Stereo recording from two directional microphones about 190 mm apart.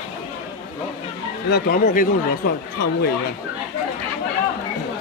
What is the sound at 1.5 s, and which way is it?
Speech, 55° left (ahead or behind).